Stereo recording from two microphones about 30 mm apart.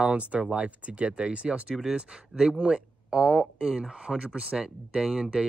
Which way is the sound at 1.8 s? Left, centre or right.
Right.